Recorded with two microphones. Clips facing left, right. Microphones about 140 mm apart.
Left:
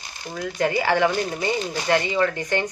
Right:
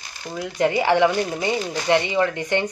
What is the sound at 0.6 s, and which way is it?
Speech, 20° right (ahead or behind).